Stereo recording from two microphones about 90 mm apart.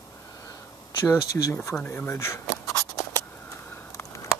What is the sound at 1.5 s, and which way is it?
Speech, 30° left (ahead or behind).